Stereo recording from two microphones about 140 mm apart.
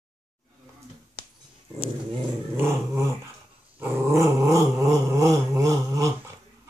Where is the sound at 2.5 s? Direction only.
15° right (ahead or behind).